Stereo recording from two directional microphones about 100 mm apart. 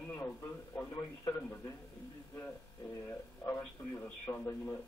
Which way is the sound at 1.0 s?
30° left (ahead or behind).